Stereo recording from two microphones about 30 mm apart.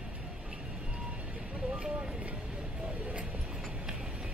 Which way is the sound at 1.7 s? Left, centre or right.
Right.